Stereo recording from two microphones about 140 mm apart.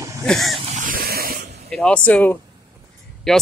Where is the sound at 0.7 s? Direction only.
75° right (ahead or behind); by 1.3 s 90° right.